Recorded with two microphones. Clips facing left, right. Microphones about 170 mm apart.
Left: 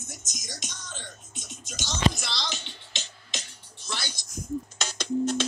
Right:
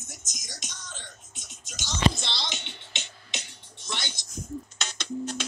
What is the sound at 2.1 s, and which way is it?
Music, 25° right (ahead or behind).